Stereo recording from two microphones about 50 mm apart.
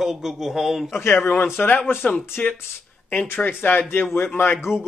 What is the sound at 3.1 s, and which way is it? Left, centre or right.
Speech, left.